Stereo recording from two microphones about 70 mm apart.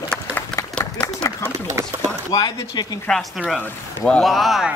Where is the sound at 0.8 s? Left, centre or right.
Centre.